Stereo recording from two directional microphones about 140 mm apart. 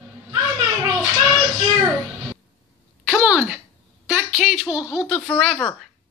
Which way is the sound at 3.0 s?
10° right (ahead or behind).